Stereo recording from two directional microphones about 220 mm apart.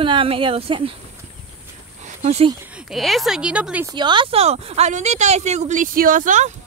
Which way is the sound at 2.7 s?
Centre (ahead or behind).